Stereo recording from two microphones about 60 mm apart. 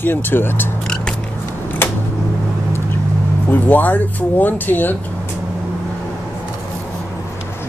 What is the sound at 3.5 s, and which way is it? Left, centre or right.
Speech, left.